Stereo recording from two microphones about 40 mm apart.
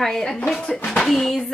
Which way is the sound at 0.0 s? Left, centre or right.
Centre.